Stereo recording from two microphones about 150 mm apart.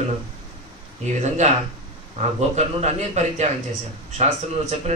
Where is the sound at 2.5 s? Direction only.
50° right (ahead or behind).